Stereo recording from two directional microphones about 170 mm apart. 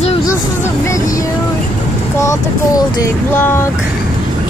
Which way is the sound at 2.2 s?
20° left (ahead or behind).